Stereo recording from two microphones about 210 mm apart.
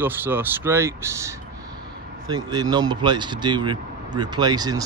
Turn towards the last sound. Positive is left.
turn(degrees=-20)  # may be behind; listen again after turning